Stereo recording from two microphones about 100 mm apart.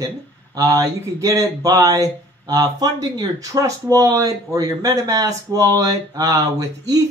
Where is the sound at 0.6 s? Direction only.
35° right (ahead or behind).